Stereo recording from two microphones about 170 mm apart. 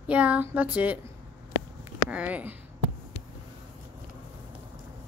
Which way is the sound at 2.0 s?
10° right (ahead or behind).